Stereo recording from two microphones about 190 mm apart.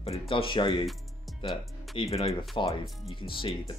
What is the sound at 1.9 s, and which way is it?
Speech, 30° left (ahead or behind).